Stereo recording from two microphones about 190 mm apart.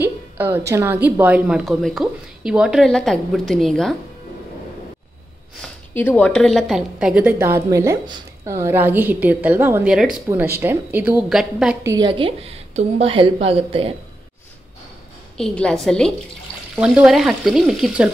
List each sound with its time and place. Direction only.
0.0 s a woman's voice: 10° right (ahead or behind)
5.6 s a woman's voice: 10° left (ahead or behind); by 13.9 s 30° right (ahead or behind)
15.3 s a woman's voice: 5° left (ahead or behind)